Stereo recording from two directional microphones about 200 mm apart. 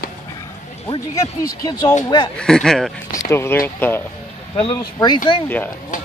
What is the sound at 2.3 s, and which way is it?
Speech, 5° left (ahead or behind).